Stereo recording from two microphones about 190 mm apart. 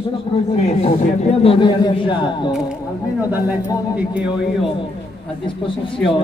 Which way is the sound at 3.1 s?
10° right (ahead or behind).